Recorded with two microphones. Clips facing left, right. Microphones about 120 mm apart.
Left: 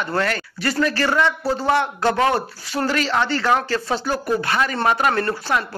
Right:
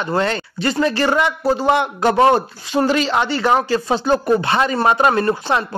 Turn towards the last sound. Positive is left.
turn(degrees=-20)  # may be behind; listen again after turning